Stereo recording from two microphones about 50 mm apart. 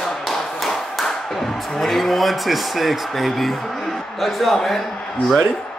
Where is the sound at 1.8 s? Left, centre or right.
Centre.